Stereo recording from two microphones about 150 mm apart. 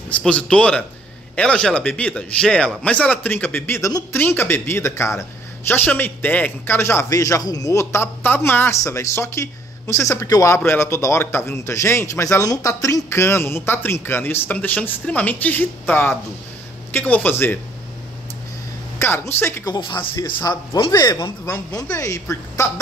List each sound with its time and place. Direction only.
0.1 s a man's voice: 5° left (ahead or behind)
18.9 s a man's voice: 15° left (ahead or behind)
19.7 s speech: 30° left (ahead or behind)